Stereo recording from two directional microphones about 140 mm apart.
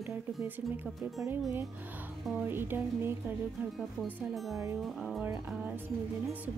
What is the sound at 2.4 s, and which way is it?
Speech, 15° right (ahead or behind).